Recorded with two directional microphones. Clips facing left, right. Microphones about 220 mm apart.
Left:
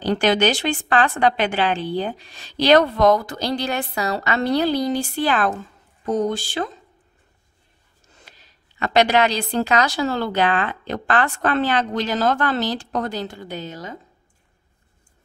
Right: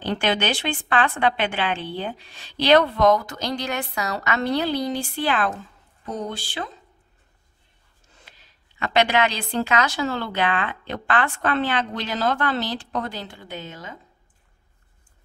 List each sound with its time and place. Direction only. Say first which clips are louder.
0.0 s a woman's voice: left 5 dB; 40° left (ahead or behind)
8.3 s a woman's voice: left 3 dB; 40° left (ahead or behind)